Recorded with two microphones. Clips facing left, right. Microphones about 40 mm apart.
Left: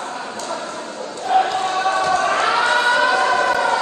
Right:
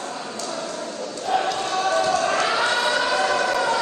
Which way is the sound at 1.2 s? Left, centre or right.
Left.